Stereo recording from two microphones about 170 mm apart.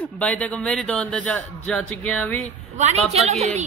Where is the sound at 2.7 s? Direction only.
40° right (ahead or behind).